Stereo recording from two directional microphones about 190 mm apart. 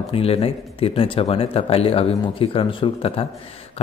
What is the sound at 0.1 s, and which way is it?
Speech, 30° left (ahead or behind).